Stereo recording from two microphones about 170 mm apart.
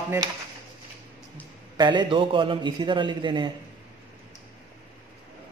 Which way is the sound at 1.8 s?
25° right (ahead or behind).